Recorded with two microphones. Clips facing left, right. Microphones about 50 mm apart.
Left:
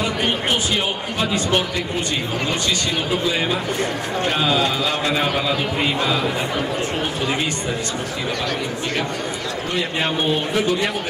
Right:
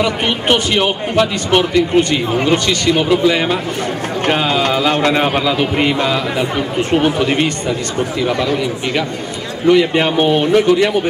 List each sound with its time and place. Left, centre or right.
0.0 s a man's voice: right
9.7 s a man's voice: right